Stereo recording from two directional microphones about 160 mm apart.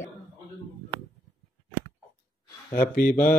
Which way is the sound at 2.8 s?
60° left (ahead or behind).